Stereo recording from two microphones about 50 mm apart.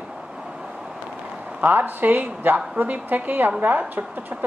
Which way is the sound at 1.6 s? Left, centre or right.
Right.